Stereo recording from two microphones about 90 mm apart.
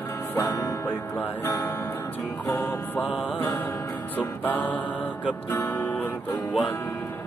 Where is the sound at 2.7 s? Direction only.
20° left (ahead or behind).